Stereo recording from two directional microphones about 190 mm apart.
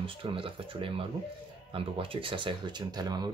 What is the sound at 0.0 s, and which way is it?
Speech, 30° right (ahead or behind).